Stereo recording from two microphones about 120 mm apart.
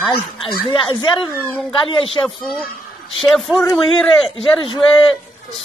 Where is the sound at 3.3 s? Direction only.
Centre (ahead or behind).